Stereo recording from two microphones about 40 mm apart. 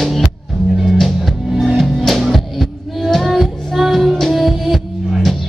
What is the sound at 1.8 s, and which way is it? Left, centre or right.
Music, centre.